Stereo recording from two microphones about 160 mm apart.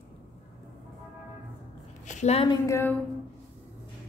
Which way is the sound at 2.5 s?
15° left (ahead or behind).